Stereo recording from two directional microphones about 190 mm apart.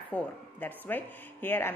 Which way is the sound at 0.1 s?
10° left (ahead or behind).